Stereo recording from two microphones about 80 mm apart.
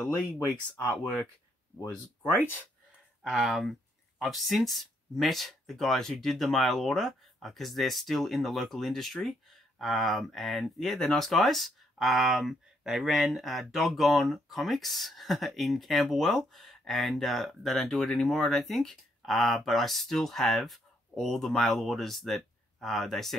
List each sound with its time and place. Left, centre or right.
0.0 s speech: centre
2.3 s speech: left
3.3 s speech: centre